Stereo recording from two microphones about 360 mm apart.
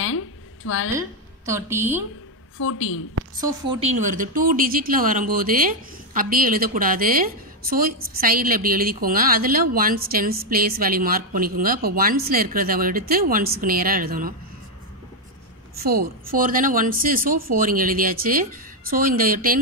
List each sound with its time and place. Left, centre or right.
0.0 s a sound: left
0.9 s a woman's voice: centre
2.6 s a woman's voice: left
3.3 s speech: centre
15.8 s speech: right